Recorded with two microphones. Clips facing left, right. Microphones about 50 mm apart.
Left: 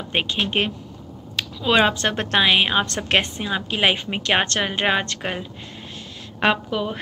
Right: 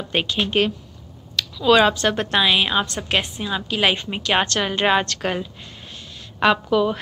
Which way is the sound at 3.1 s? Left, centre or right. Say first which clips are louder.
Left 2 dB; left.